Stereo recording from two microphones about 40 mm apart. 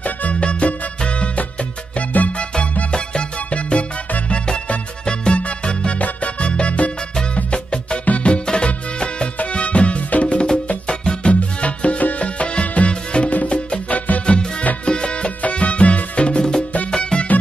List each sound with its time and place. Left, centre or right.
0.0 s music: left
8.0 s music: left
8.3 s music: left
13.9 s music: left
14.2 s music: left